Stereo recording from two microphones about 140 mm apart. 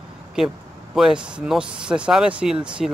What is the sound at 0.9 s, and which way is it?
A man's voice, 5° right (ahead or behind).